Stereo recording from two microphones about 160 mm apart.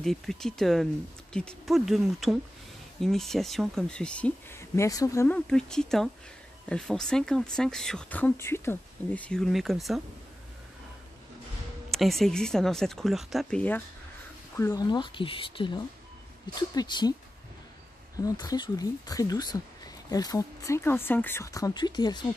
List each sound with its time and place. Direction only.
0.0 s speech: centre (ahead or behind); by 5.4 s 15° left (ahead or behind)
5.5 s speech: 5° left (ahead or behind)
11.9 s speech: centre (ahead or behind)
14.6 s speech: 20° left (ahead or behind)
18.2 s speech: 25° left (ahead or behind)